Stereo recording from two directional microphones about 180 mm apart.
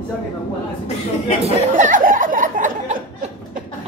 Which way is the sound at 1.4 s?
45° right (ahead or behind).